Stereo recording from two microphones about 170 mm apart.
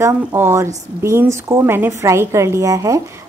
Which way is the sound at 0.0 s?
15° right (ahead or behind).